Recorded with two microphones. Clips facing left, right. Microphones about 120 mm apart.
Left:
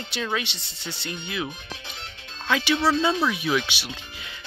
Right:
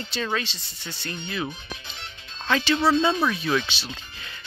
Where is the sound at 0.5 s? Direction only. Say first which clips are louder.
Left 1 dB; 70° left (ahead or behind).